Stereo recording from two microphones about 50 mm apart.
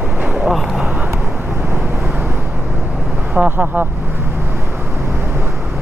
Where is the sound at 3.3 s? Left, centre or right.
Right.